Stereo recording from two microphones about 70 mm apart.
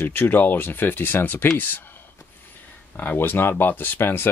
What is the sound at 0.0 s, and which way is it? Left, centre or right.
Speech, left.